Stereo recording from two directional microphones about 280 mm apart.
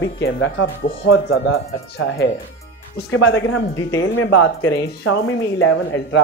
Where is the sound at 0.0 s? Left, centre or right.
Left.